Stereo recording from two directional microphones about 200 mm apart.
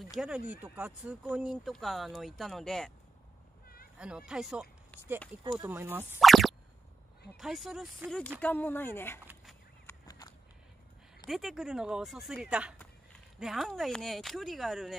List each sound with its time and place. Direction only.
0.0 s speech: centre (ahead or behind)
3.6 s cat: 50° left (ahead or behind)
4.3 s speech: 5° right (ahead or behind)
5.4 s speech: 20° right (ahead or behind)
5.7 s speech: 10° right (ahead or behind); by 9.2 s 10° left (ahead or behind)
9.2 s fowl: 10° right (ahead or behind)
9.8 s fowl: 20° left (ahead or behind)
11.2 s speech: centre (ahead or behind)